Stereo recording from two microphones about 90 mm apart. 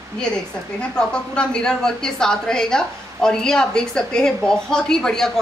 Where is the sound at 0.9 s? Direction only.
10° left (ahead or behind).